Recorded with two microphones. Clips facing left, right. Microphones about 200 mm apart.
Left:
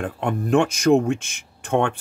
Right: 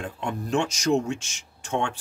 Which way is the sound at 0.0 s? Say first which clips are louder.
Left 6 dB; 55° left (ahead or behind).